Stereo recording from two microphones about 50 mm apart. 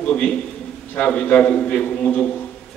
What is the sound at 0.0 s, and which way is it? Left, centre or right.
A man's voice, left.